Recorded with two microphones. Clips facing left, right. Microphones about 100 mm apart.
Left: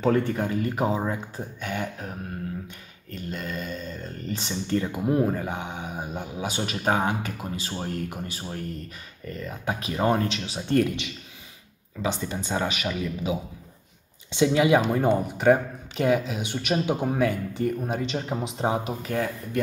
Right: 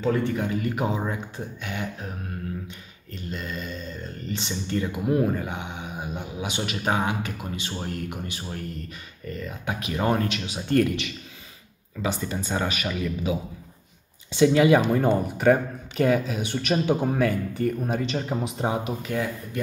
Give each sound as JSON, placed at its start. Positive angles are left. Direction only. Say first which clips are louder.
{"t": 0.0, "sound": "speech", "louder": "left 1 dB", "side_deg": 50}
{"t": 3.1, "sound": "speech", "louder": "left 1 dB", "side_deg": 45}